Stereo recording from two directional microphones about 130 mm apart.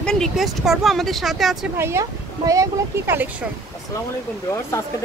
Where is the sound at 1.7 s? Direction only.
20° right (ahead or behind).